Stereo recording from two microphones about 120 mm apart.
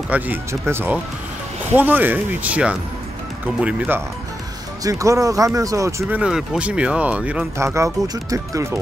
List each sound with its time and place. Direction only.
0.1 s speech: 20° right (ahead or behind)
4.8 s speech: 30° right (ahead or behind)
6.1 s speech: 5° right (ahead or behind)
7.5 s speech: 25° right (ahead or behind)